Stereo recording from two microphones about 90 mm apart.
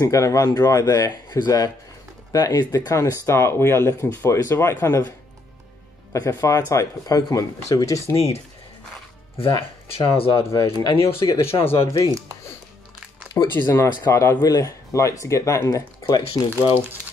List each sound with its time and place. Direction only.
0.0 s speech: 35° left (ahead or behind)
6.1 s speech: 35° left (ahead or behind)
9.4 s speech: 80° left
10.3 s speech: 35° left (ahead or behind)
10.8 s speech: 60° left (ahead or behind)
11.2 s speech: 35° left (ahead or behind)
13.4 s speech: 30° left (ahead or behind)
14.4 s speech: 40° left (ahead or behind)